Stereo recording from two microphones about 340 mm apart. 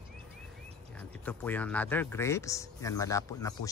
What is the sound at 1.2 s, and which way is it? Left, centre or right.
Speech, centre.